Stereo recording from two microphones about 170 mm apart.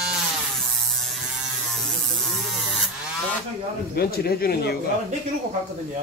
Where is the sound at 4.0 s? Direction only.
65° left (ahead or behind).